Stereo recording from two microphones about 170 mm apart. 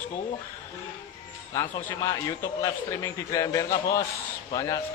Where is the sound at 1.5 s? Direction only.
15° left (ahead or behind).